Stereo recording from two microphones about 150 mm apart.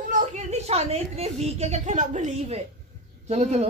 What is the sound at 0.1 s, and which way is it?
A woman's voice, 50° right (ahead or behind).